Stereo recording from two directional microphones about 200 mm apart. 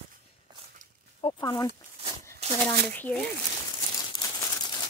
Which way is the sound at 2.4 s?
30° right (ahead or behind).